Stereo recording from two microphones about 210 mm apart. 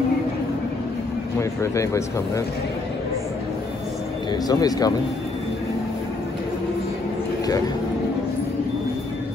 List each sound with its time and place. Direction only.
1.4 s speech: 15° left (ahead or behind)
4.3 s speech: 20° left (ahead or behind)